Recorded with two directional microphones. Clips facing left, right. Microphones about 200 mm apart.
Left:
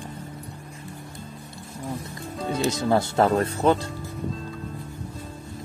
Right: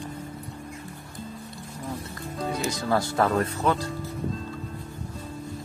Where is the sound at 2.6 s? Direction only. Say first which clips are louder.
Left 5 dB; 25° left (ahead or behind).